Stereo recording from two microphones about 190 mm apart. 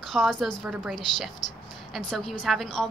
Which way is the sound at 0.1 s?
Centre (ahead or behind).